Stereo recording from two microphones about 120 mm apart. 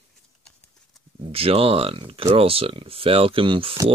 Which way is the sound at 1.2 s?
50° right (ahead or behind).